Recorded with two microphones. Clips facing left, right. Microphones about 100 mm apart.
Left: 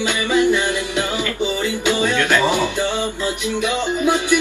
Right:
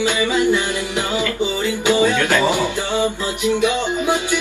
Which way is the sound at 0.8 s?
20° right (ahead or behind).